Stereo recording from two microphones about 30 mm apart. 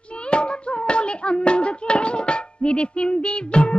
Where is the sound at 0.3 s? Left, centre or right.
Left.